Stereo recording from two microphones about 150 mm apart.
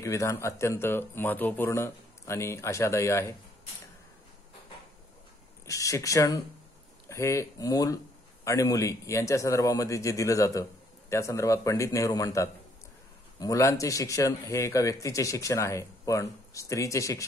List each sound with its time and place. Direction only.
0.0 s a man's voice: 20° left (ahead or behind)
5.7 s a man's voice: 20° left (ahead or behind)